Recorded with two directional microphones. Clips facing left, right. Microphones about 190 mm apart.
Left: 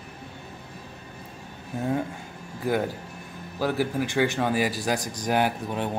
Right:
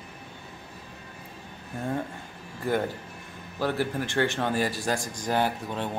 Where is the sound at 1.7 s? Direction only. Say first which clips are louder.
Left 4 dB; 5° left (ahead or behind).